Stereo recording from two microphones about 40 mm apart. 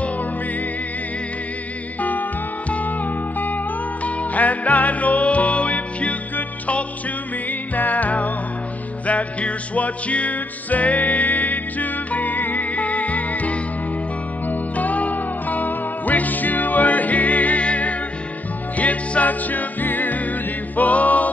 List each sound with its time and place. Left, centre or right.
2.0 s music: left
4.0 s music: left
7.7 s music: left